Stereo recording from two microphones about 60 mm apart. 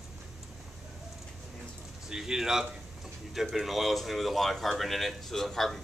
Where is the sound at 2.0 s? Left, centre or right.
Centre.